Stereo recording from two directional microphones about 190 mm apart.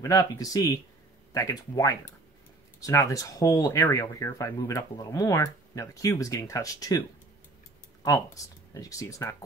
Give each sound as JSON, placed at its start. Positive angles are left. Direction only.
{"t": 0.0, "sound": "speech", "side_deg": 20}
{"t": 8.7, "sound": "speech", "side_deg": 15}